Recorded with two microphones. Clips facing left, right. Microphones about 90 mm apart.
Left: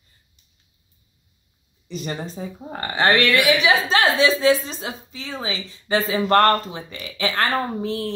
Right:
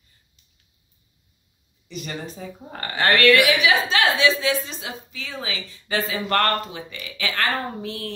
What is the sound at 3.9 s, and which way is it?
A woman's voice, 40° left (ahead or behind).